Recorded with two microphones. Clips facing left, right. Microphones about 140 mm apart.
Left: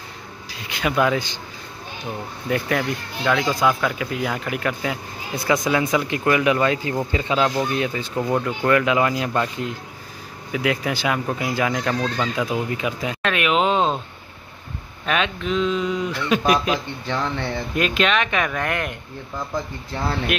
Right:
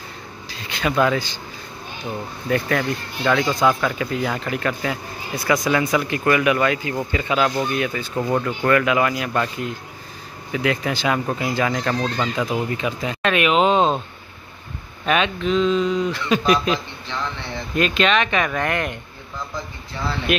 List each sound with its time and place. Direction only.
0.5 s speech: 15° left (ahead or behind)
2.5 s speech: 10° left (ahead or behind)
5.3 s speech: 25° left (ahead or behind)
8.2 s speech: 5° left (ahead or behind)
8.5 s speech: 15° left (ahead or behind)
10.5 s speech: 10° left (ahead or behind)
13.2 s speech: centre (ahead or behind)
15.0 s speech: centre (ahead or behind)